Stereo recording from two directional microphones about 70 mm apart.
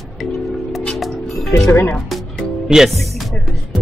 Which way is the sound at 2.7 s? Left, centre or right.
Centre.